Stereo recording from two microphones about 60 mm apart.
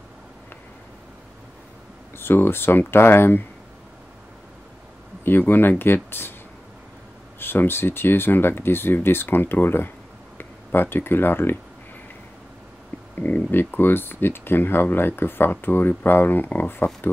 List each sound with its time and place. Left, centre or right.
2.1 s speech: left
5.2 s speech: left
7.3 s speech: left
13.1 s speech: left